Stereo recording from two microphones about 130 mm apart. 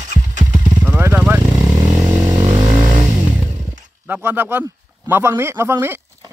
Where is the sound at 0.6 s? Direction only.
25° right (ahead or behind).